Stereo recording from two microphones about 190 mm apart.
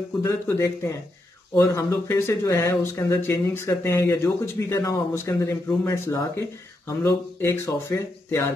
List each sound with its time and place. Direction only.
0.2 s speech: 15° left (ahead or behind)